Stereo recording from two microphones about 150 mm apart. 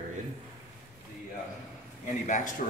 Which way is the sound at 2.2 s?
55° left (ahead or behind).